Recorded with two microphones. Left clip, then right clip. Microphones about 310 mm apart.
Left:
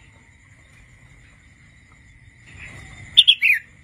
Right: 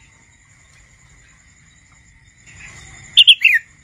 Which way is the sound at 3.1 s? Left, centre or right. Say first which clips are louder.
Right 5 dB; centre.